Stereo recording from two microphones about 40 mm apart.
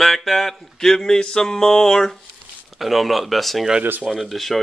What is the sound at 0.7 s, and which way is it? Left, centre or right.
Speech, centre.